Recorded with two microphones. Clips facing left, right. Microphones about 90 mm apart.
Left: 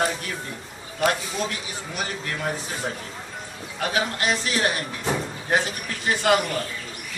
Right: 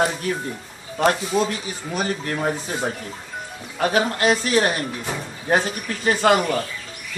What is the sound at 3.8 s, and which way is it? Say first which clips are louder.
A man's voice: right 6 dB; 35° right (ahead or behind).